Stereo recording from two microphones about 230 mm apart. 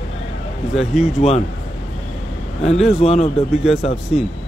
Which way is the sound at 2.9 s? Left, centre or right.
Left.